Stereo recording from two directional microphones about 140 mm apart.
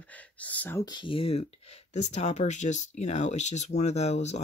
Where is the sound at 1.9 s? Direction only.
55° left (ahead or behind).